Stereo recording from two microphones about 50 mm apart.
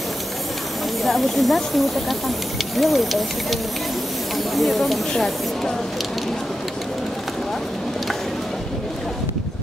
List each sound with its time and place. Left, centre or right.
1.0 s speech: centre
4.6 s speech: centre